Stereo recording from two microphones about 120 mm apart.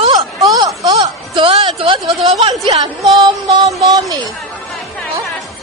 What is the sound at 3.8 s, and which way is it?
Speech, 30° right (ahead or behind).